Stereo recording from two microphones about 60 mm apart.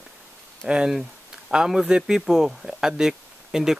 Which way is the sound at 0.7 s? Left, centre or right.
Centre.